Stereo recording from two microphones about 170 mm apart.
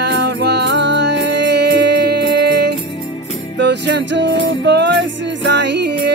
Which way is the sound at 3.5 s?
90° right.